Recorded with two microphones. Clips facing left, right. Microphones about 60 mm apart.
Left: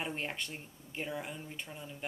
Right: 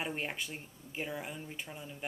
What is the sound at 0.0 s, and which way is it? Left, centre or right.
Speech, centre.